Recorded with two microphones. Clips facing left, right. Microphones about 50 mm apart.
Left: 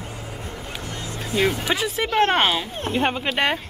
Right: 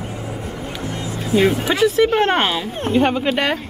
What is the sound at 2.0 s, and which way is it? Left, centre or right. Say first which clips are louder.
Speech: right 3 dB; right.